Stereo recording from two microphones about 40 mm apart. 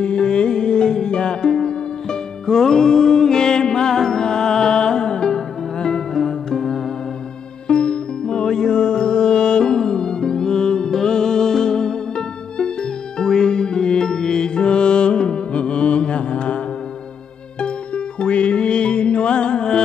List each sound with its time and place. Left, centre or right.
0.0 s music: left